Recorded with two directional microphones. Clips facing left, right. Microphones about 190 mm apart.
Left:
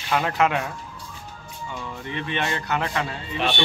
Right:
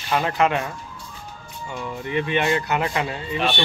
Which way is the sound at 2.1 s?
10° right (ahead or behind).